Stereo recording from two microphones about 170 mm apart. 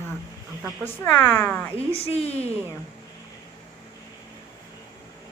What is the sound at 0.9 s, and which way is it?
Speech, 10° left (ahead or behind).